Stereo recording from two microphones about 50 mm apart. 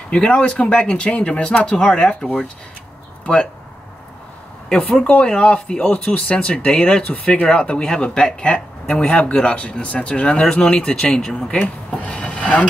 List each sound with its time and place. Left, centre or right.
0.1 s speech: left
4.6 s speech: centre